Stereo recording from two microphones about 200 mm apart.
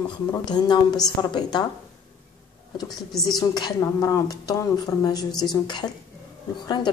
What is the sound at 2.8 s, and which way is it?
Speech, centre (ahead or behind).